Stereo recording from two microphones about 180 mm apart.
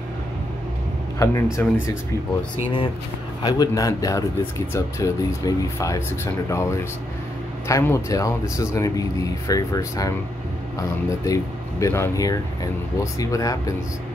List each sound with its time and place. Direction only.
1.2 s speech: 15° left (ahead or behind)
3.4 s speech: 20° left (ahead or behind)